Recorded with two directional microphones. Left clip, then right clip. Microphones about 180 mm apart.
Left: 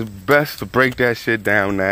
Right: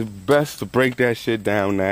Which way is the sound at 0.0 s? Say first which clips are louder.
Left 3 dB; 10° right (ahead or behind).